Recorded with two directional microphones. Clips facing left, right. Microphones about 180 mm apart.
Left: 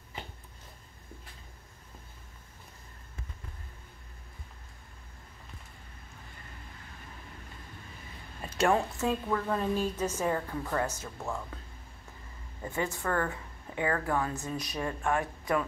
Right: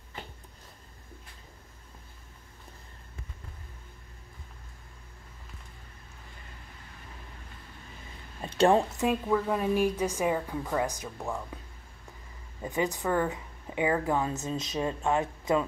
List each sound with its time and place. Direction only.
8.4 s a sound: 30° right (ahead or behind)
8.9 s a woman's voice: 15° right (ahead or behind)
12.6 s a woman's voice: 15° right (ahead or behind)